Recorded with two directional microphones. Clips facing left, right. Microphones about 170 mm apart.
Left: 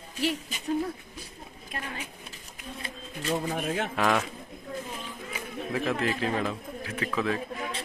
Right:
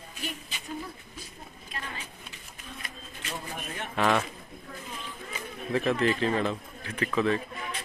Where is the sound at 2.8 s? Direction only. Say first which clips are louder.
Left 10 dB; 35° left (ahead or behind).